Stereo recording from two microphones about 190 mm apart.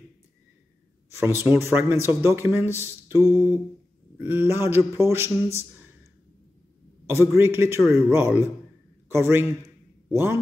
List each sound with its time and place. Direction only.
1.4 s speech: 10° right (ahead or behind)
7.1 s speech: 10° right (ahead or behind)